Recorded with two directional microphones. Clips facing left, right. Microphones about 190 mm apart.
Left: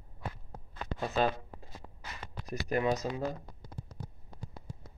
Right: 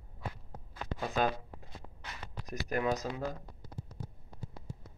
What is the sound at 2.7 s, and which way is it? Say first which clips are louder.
Speech: left 3 dB; centre (ahead or behind).